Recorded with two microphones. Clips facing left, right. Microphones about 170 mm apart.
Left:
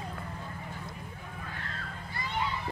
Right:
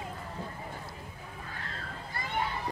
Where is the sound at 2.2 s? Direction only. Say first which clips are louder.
Even; 50° right (ahead or behind).